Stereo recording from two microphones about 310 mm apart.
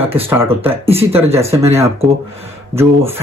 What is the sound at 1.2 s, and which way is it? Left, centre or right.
Speech, centre.